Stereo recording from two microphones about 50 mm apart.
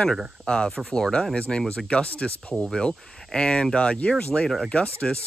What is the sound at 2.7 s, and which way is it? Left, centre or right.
Speech, centre.